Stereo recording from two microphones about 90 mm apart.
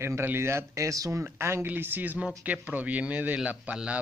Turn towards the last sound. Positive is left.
turn(degrees=-10)  # may be behind; listen again after turning